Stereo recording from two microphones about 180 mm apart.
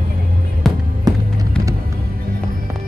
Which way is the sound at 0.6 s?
Centre (ahead or behind).